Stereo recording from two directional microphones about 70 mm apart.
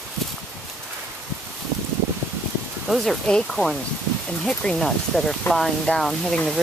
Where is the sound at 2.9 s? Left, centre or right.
Centre.